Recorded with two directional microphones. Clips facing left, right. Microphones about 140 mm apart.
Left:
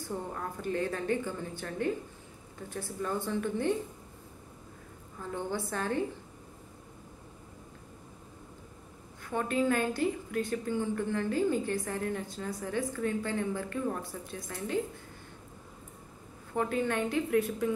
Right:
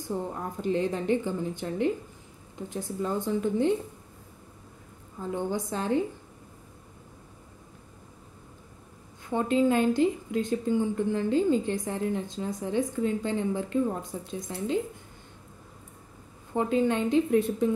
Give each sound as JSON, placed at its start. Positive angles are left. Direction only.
{"t": 0.0, "sound": "a woman's voice", "side_deg": -20}
{"t": 5.2, "sound": "speech", "side_deg": -15}
{"t": 9.2, "sound": "a woman's voice", "side_deg": -20}
{"t": 16.5, "sound": "a woman's voice", "side_deg": -20}